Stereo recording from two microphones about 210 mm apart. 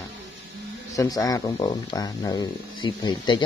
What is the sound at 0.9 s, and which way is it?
Speech, 15° left (ahead or behind).